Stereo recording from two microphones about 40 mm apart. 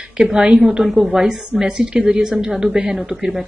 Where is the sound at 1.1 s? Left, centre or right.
Centre.